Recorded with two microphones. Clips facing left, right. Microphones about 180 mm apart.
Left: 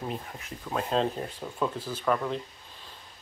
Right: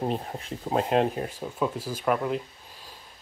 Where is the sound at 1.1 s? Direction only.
5° right (ahead or behind).